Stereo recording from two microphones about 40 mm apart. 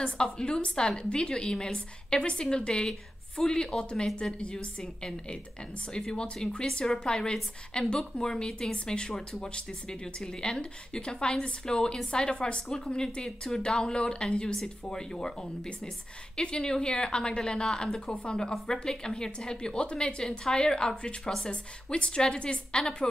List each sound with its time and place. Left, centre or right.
0.0 s a woman's voice: left
16.3 s a woman's voice: centre